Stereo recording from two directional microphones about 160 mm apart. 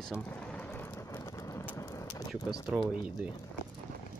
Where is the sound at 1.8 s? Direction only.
20° left (ahead or behind).